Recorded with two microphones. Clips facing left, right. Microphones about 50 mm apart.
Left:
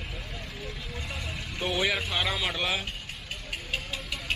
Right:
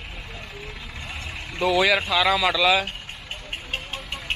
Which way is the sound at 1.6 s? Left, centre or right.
Right.